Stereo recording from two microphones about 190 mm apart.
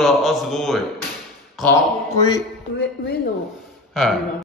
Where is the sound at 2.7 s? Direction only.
65° left (ahead or behind).